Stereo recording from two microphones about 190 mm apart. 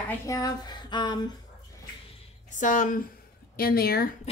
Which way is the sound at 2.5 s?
40° left (ahead or behind).